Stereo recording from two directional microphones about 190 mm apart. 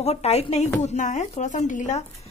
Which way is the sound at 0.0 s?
35° left (ahead or behind).